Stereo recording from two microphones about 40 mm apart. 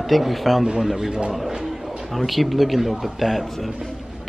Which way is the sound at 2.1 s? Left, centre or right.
Centre.